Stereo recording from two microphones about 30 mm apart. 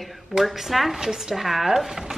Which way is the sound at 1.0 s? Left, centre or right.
Centre.